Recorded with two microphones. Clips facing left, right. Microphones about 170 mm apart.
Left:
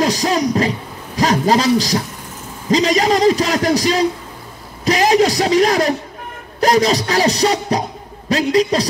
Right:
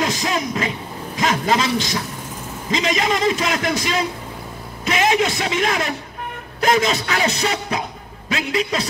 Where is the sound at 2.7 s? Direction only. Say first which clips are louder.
Left 6 dB; 35° left (ahead or behind).